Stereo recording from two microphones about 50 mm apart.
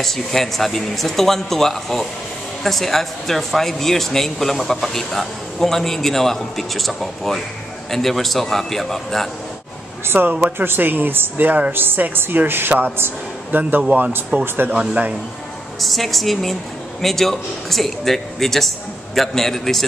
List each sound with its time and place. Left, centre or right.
0.0 s a man's voice: centre
10.0 s speech: right
15.8 s a man's voice: centre